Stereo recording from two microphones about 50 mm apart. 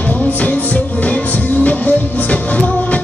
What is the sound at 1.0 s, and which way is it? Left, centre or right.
Music, left.